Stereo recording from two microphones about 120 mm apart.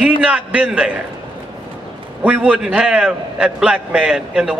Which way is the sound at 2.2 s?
10° right (ahead or behind).